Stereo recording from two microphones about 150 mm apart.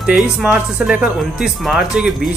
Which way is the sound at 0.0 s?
5° right (ahead or behind).